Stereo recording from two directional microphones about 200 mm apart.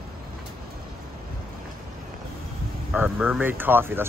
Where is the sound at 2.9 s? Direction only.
5° right (ahead or behind).